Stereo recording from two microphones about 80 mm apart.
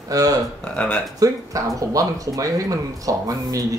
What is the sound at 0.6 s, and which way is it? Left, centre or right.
Speech, centre.